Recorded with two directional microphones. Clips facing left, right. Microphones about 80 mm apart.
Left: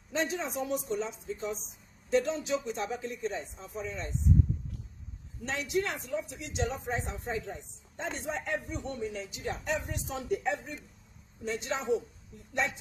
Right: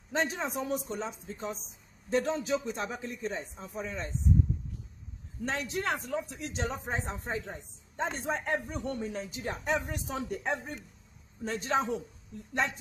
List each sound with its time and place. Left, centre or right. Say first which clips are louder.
0.4 s speech: even; right
5.4 s speech: left 1 dB; right